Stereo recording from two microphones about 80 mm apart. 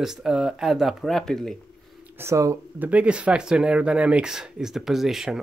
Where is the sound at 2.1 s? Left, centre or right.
Right.